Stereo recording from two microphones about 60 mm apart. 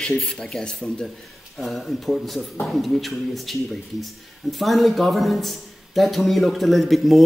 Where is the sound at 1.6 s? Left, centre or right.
Centre.